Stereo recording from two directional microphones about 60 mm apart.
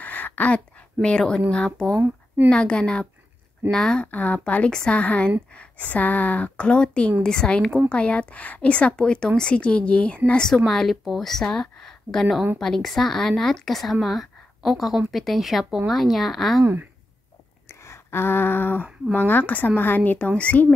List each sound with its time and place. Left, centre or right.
0.0 s a sound: left
1.0 s a woman's voice: centre
2.0 s speech: right
2.5 s a woman's voice: centre
4.1 s a woman's voice: left
10.7 s a woman's voice: centre
17.6 s a sound: left
19.1 s speech: left